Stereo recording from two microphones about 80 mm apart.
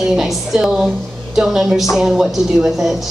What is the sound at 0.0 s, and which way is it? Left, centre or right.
A woman's voice, centre.